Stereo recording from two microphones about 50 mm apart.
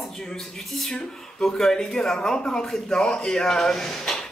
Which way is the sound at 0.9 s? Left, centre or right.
Centre.